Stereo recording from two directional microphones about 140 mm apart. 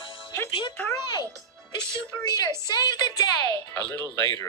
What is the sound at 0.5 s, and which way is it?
Speech, 35° left (ahead or behind).